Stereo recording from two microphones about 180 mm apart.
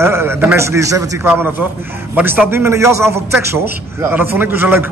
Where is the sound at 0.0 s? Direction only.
15° right (ahead or behind).